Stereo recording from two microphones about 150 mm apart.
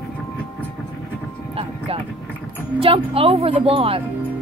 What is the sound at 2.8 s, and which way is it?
Speech, 40° right (ahead or behind).